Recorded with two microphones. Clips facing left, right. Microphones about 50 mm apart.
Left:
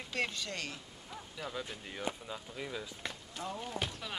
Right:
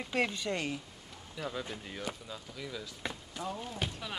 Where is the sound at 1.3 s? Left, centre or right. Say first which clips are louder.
Right 3 dB; centre.